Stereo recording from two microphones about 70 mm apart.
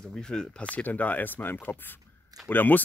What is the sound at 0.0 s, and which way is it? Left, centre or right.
Speech, centre.